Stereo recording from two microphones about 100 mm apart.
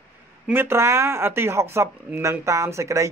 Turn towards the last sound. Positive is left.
turn(degrees=-30)  # may be behind; listen again after turning